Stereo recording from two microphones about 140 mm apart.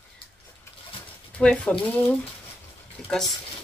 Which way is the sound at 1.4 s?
10° left (ahead or behind).